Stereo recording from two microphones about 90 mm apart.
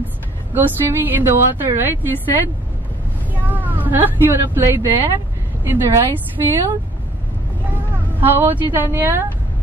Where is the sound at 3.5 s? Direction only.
20° right (ahead or behind).